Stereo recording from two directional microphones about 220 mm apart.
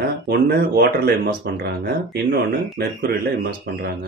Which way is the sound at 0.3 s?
45° right (ahead or behind).